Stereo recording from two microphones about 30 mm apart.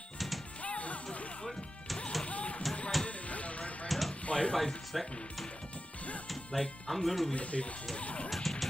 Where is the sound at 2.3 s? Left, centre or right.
Left.